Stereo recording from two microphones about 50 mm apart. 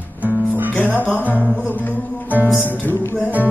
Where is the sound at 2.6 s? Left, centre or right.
Left.